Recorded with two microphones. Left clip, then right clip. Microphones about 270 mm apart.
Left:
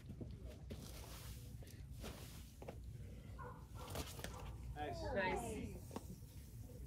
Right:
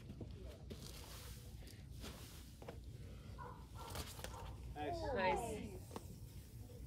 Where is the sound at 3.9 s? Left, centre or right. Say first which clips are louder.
Left 1 dB; centre.